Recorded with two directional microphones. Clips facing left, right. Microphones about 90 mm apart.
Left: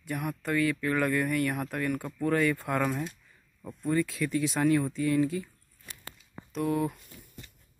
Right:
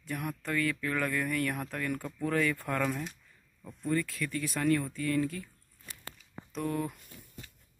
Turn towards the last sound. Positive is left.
turn(degrees=5)  # may be behind; listen again after turning